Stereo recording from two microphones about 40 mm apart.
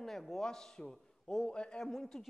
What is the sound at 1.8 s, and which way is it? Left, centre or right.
Speech, centre.